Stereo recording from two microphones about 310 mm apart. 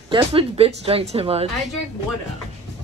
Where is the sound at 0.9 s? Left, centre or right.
Centre.